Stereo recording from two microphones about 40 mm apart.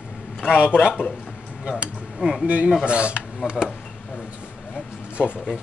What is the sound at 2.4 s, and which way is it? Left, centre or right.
Speech, right.